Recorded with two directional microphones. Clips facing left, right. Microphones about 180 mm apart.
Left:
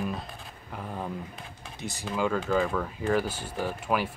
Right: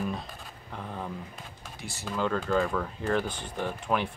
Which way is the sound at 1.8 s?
20° left (ahead or behind).